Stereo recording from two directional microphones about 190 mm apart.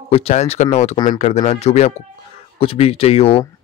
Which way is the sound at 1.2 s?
40° left (ahead or behind).